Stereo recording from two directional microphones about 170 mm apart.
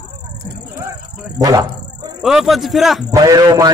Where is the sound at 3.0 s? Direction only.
20° right (ahead or behind).